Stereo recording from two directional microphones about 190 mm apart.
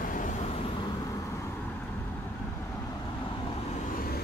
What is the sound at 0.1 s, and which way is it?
Vehicle, 40° left (ahead or behind).